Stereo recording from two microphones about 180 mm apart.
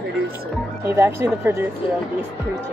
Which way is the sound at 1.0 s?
15° right (ahead or behind).